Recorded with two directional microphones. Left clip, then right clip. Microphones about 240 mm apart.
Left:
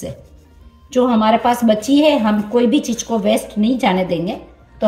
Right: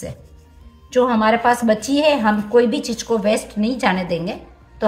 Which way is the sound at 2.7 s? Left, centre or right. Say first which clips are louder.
Left 5 dB; right.